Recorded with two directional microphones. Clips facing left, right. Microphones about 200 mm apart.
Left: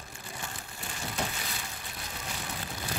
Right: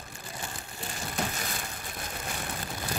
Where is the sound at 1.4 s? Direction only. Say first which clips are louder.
Right 3 dB; 50° right (ahead or behind).